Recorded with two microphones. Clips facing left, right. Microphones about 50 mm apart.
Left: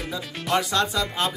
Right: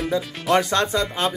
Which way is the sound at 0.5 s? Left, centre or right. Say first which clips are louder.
Right 3 dB; right.